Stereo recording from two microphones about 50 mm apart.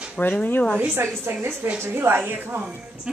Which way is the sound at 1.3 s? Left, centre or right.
Right.